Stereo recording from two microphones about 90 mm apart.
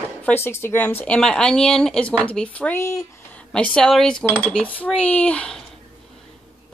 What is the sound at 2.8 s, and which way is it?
Speech, 35° left (ahead or behind).